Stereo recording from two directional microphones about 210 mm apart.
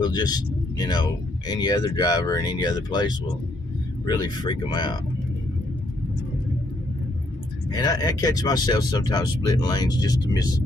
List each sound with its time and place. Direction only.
0.0 s speech: 20° left (ahead or behind)
7.7 s speech: 20° left (ahead or behind)